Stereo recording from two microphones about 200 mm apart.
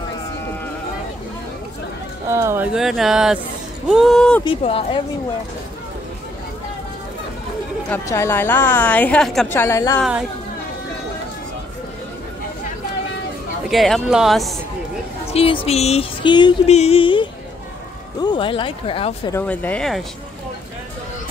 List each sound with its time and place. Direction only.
2.2 s speech: 15° right (ahead or behind); by 4.4 s 5° left (ahead or behind)
4.5 s a sound: 25° left (ahead or behind)
7.9 s a woman's voice: 10° left (ahead or behind)
13.7 s speech: centre (ahead or behind)
15.2 s a sound: 30° left (ahead or behind)
19.3 s a woman's voice: 10° left (ahead or behind)